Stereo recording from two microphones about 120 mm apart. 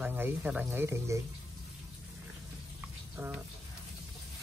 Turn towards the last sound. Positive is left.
turn(degrees=-15)  # may be behind; listen again after turning